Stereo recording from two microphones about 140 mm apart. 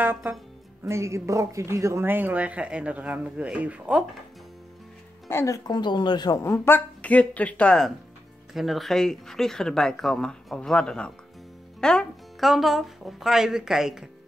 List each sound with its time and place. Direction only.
0.0 s speech: 15° right (ahead or behind)
5.3 s a woman's voice: 20° left (ahead or behind); by 14.0 s 5° right (ahead or behind)